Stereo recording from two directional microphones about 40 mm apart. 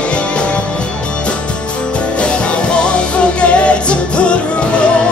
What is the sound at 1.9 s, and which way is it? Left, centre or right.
Music, left.